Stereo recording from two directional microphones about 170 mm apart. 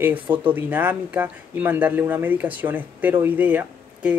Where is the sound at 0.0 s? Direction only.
10° right (ahead or behind).